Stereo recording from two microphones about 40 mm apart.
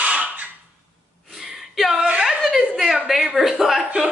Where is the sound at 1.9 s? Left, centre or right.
Right.